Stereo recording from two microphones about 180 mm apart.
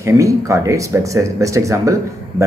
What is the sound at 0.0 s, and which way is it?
A man's voice, 15° right (ahead or behind).